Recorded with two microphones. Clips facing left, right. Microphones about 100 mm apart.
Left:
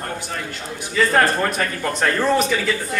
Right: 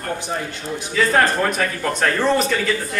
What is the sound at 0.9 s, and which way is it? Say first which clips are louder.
A man's voice: even; centre (ahead or behind).